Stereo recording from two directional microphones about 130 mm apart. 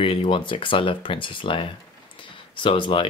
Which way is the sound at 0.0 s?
40° left (ahead or behind).